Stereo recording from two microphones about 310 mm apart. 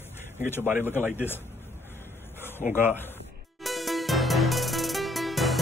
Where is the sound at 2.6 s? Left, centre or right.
Left.